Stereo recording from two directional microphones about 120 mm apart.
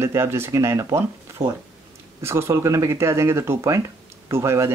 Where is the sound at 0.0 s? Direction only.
20° right (ahead or behind).